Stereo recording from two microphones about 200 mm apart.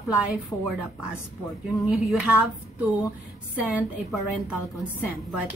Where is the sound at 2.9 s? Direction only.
15° left (ahead or behind).